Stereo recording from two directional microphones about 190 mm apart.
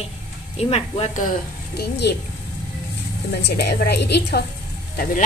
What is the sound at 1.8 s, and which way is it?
Speech, 60° left (ahead or behind).